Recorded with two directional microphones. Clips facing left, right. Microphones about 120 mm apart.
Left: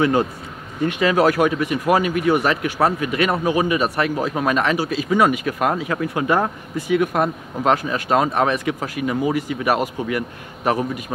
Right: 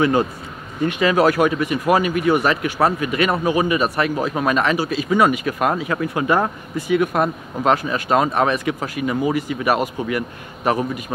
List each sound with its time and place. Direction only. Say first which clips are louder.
0.0 s speech: right 1 dB; 15° right (ahead or behind)